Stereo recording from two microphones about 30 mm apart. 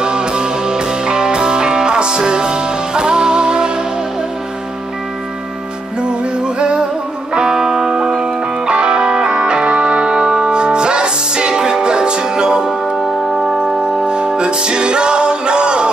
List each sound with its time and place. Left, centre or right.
0.0 s music: right
6.0 s music: right
7.3 s music: centre
8.2 s music: right
12.9 s music: centre
14.0 s music: right